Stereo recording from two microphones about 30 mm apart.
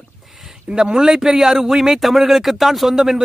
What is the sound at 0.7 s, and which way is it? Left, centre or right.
A man's voice, right.